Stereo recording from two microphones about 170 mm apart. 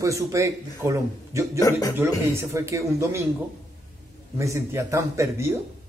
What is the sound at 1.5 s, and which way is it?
Speech, 20° left (ahead or behind).